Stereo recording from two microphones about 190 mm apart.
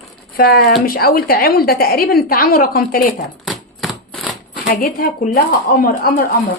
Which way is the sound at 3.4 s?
Centre (ahead or behind).